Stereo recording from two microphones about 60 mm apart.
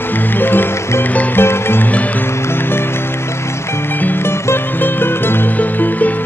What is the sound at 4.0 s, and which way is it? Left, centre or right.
Music, left.